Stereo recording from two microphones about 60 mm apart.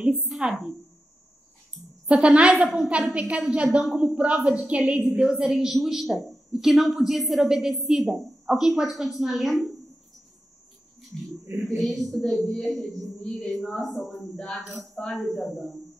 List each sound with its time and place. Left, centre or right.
0.1 s a sound: centre
0.5 s a woman's voice: centre
2.2 s a woman's voice: centre
11.4 s speech: right
11.8 s a woman's voice: centre
14.3 s speech: centre
15.2 s a woman's voice: centre